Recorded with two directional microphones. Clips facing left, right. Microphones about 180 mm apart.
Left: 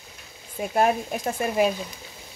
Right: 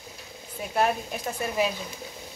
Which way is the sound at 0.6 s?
45° left (ahead or behind).